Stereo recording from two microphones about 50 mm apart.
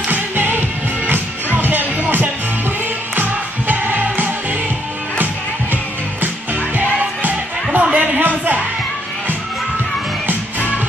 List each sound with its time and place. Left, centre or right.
0.1 s music: right
6.8 s music: right
7.9 s a sound: right